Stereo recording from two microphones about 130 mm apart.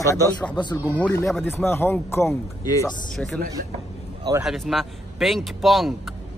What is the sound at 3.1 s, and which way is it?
Speech, 5° left (ahead or behind).